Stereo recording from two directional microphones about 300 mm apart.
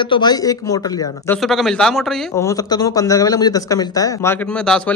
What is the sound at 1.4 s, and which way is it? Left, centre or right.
A man's voice, centre.